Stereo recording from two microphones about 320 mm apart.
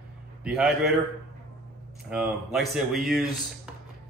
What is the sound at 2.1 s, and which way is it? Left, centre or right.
A man's voice, centre.